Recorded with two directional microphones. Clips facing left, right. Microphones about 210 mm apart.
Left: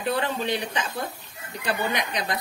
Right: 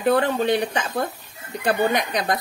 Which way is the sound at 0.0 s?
55° right (ahead or behind).